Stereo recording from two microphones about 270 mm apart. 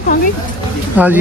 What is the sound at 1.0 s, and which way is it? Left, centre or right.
Speech, centre.